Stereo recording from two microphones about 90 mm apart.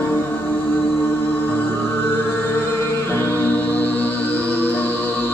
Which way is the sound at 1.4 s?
25° left (ahead or behind).